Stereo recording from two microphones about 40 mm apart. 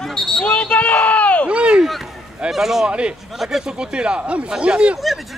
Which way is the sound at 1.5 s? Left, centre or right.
Right.